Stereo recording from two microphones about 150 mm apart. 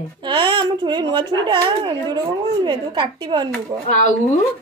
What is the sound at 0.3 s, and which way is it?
A woman's voice, 30° right (ahead or behind).